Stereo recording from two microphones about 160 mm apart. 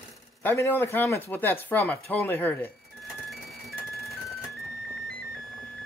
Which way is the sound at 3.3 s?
Centre (ahead or behind).